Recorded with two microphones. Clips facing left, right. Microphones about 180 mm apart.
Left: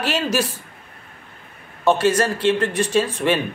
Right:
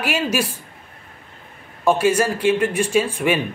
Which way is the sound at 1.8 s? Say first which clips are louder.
Even; 10° right (ahead or behind).